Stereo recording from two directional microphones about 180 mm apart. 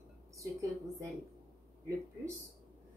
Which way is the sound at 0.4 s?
15° right (ahead or behind).